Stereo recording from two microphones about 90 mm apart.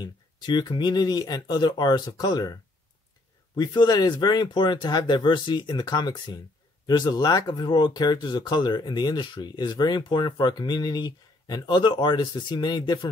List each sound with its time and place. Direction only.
0.0 s speech: 55° left (ahead or behind)